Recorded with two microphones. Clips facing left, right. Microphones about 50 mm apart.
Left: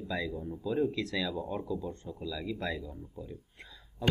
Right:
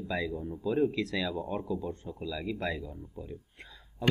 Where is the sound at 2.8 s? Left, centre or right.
Centre.